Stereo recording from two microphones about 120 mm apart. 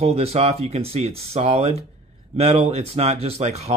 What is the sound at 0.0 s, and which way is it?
Speech, 55° right (ahead or behind).